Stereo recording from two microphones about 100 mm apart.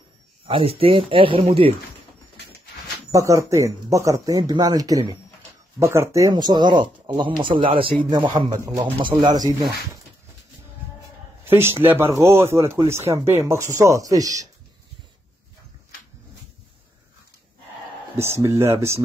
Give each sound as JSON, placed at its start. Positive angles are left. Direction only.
{"t": 0.5, "sound": "a man's voice", "side_deg": -65}
{"t": 3.1, "sound": "speech", "side_deg": -35}
{"t": 6.3, "sound": "a man's voice", "side_deg": -45}
{"t": 8.5, "sound": "speech", "side_deg": -35}
{"t": 11.4, "sound": "speech", "side_deg": -25}
{"t": 18.1, "sound": "speech", "side_deg": -25}